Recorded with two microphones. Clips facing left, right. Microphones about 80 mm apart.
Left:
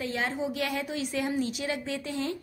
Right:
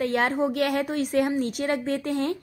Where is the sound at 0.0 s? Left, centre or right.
Right.